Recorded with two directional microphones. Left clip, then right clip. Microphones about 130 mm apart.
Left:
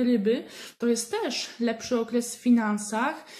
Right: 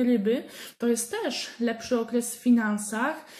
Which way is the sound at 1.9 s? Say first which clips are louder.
Even; 20° left (ahead or behind).